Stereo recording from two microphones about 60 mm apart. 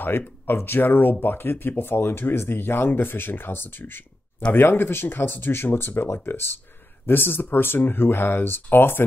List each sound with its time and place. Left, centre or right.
0.0 s speech: left